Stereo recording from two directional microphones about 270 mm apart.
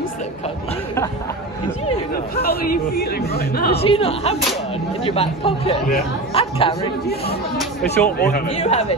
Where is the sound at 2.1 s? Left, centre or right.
Left.